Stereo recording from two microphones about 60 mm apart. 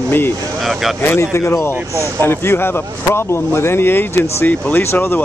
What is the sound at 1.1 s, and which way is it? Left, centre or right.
Speech, left.